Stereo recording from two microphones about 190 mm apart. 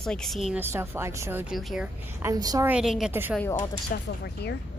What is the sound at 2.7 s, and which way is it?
Speech, 5° right (ahead or behind).